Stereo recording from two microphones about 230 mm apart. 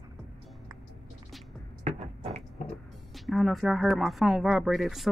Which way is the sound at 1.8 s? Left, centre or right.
Right.